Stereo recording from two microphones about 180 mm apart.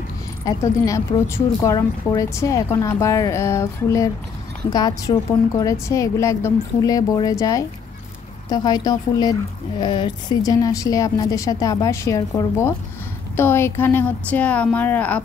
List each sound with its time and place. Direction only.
0.5 s speech: 15° left (ahead or behind)